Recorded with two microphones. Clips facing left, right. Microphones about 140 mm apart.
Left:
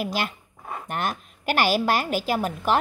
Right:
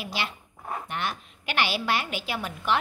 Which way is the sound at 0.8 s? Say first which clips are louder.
Left 7 dB; 45° left (ahead or behind).